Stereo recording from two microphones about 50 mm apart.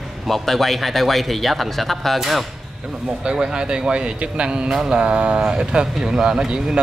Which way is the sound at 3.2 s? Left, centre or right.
Centre.